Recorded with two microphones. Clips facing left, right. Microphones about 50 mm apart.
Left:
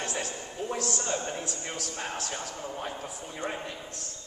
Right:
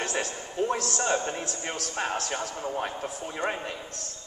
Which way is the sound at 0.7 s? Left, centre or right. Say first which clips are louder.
Right 3 dB; right.